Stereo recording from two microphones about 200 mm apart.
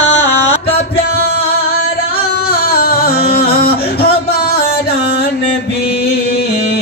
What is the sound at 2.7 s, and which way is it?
Music, 50° left (ahead or behind).